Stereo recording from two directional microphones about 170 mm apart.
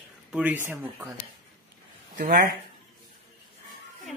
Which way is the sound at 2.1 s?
50° right (ahead or behind).